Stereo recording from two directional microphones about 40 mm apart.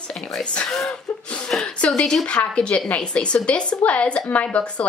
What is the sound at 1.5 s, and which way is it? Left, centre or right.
A woman's voice, left.